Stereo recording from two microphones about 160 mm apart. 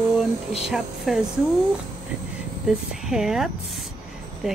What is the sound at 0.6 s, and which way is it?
Speech, centre (ahead or behind).